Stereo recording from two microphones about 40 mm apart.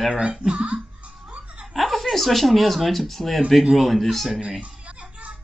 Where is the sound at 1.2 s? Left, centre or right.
Right.